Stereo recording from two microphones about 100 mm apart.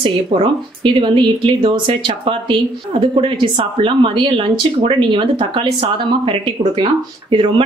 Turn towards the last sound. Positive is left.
turn(degrees=-60)  # may be behind; listen again after turning